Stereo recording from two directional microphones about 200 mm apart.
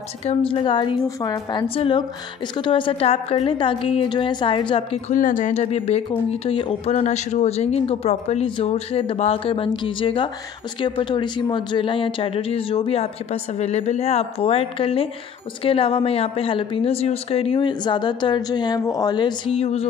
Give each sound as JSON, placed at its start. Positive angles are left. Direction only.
{"t": 0.2, "sound": "speech", "side_deg": 30}
{"t": 5.1, "sound": "speech", "side_deg": 40}